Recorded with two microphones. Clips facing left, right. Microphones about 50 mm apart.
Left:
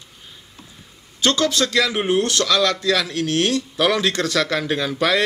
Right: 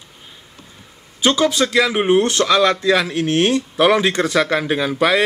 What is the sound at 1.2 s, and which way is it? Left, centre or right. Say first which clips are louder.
Speech: right 3 dB; centre.